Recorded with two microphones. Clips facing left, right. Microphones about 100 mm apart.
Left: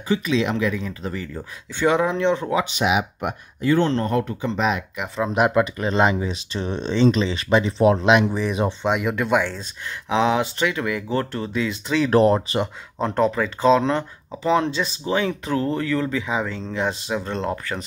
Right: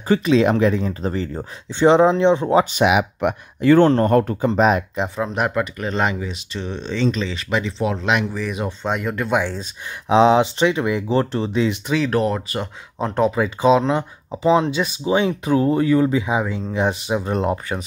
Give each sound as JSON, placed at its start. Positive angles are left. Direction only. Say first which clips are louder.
{"t": 0.1, "sound": "speech", "louder": "right 6 dB", "side_deg": -45}
{"t": 2.8, "sound": "speech", "louder": "right 5 dB", "side_deg": -65}
{"t": 5.3, "sound": "speech", "louder": "left 3 dB", "side_deg": 15}
{"t": 6.2, "sound": "speech", "louder": "left 2 dB", "side_deg": 35}
{"t": 8.0, "sound": "speech", "louder": "left 4 dB", "side_deg": 20}
{"t": 8.8, "sound": "speech", "louder": "right 2 dB", "side_deg": 5}
{"t": 10.0, "sound": "speech", "louder": "right 6 dB", "side_deg": -25}
{"t": 12.1, "sound": "speech", "louder": "left 4 dB", "side_deg": 30}
{"t": 13.0, "sound": "speech", "louder": "right 1 dB", "side_deg": -5}